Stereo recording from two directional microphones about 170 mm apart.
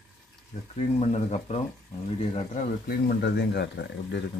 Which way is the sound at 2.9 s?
65° left (ahead or behind).